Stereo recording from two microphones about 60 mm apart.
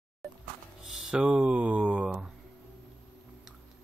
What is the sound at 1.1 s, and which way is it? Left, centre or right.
Speech, centre.